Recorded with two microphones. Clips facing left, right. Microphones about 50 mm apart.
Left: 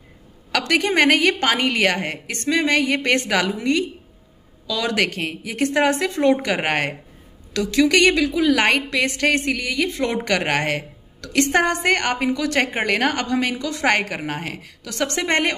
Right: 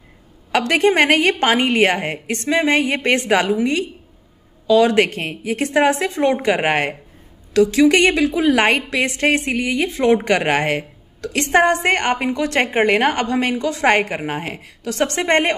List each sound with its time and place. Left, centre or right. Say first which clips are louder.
0.5 s a woman's voice: right 4 dB; right
6.5 s a woman's voice: right 3 dB; centre